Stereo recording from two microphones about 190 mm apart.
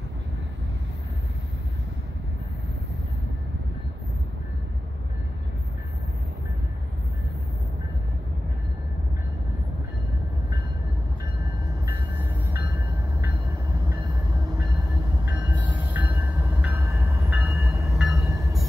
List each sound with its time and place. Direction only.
15.2 s train: 10° right (ahead or behind)